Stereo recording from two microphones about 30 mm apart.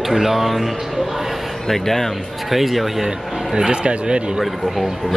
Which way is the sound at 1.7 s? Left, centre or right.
Centre.